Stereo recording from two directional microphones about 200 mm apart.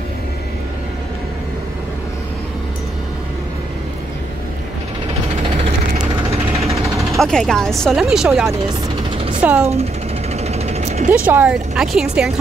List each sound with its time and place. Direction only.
5.9 s vehicle: 30° right (ahead or behind)
7.2 s a woman's voice: centre (ahead or behind)
10.4 s mechanisms: 30° right (ahead or behind)
11.2 s a woman's voice: 5° right (ahead or behind)